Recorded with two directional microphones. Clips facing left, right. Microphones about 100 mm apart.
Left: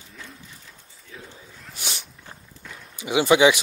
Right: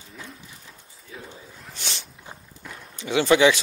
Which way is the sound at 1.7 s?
10° left (ahead or behind).